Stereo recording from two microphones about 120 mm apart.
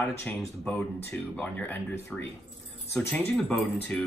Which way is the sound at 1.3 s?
10° left (ahead or behind).